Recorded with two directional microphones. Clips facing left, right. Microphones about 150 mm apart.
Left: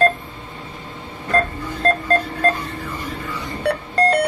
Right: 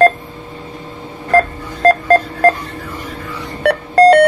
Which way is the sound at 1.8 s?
80° right.